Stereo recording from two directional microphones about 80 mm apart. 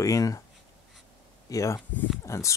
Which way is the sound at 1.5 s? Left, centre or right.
Left.